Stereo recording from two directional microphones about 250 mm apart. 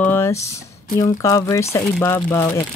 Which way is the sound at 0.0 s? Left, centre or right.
Centre.